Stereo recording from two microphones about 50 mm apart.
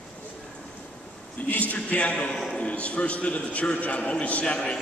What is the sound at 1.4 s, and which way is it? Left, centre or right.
Speech, left.